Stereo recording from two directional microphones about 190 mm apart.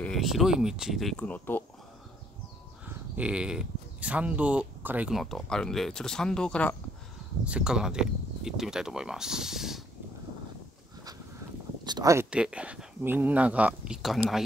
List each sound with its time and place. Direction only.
0.0 s speech: centre (ahead or behind)
3.2 s speech: 5° right (ahead or behind)
7.4 s speech: 5° right (ahead or behind)
11.8 s a sound: 20° right (ahead or behind)
12.3 s speech: 5° right (ahead or behind)